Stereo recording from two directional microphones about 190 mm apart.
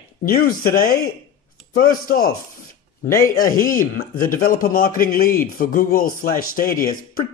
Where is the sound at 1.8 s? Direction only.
50° left (ahead or behind).